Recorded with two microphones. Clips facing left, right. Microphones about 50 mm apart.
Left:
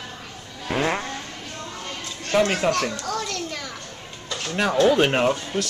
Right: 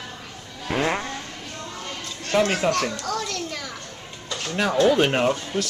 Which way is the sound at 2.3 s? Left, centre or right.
Centre.